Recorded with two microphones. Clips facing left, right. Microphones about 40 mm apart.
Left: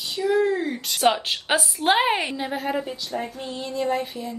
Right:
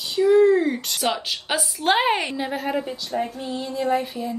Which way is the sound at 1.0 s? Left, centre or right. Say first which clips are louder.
Left 4 dB; left.